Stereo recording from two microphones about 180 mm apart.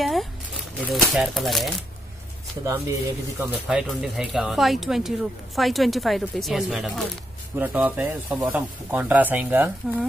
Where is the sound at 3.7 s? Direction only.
5° right (ahead or behind).